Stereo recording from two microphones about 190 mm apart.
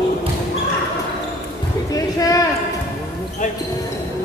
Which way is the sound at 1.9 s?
20° left (ahead or behind).